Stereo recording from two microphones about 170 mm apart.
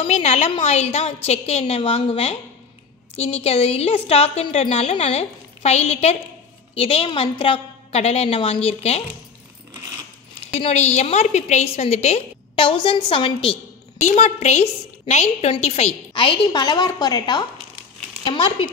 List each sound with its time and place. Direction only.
0.0 s a woman's voice: 40° left (ahead or behind)
10.5 s a woman's voice: 40° left (ahead or behind)
14.0 s a woman's voice: 40° left (ahead or behind)